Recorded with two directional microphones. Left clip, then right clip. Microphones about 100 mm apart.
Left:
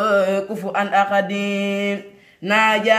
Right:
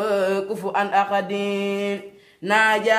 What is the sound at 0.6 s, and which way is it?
Speech, 20° right (ahead or behind).